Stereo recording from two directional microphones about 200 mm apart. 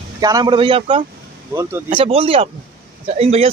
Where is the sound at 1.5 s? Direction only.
10° right (ahead or behind).